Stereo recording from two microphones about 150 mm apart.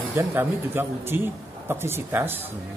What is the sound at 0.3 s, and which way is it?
A man's voice, 15° right (ahead or behind).